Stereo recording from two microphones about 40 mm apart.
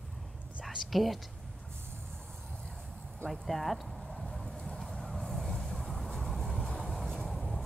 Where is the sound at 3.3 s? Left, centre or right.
Centre.